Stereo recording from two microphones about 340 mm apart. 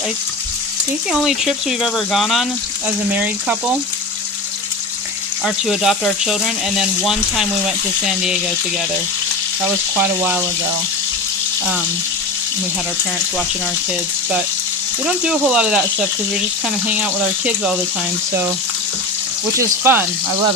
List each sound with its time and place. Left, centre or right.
1.2 s speech: centre
5.4 s speech: centre
9.9 s speech: centre
15.2 s speech: centre
19.5 s speech: centre